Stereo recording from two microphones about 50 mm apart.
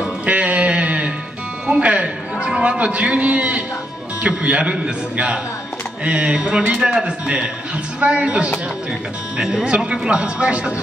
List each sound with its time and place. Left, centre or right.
0.2 s a sound: right
1.7 s music: right
2.8 s a man's voice: right
8.0 s a man's voice: right
9.4 s a man's voice: centre